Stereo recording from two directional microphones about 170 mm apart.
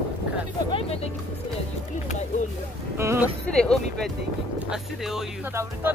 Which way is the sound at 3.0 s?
15° right (ahead or behind).